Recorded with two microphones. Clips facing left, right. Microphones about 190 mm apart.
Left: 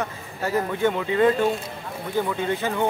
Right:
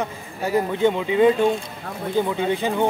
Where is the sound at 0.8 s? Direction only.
15° right (ahead or behind).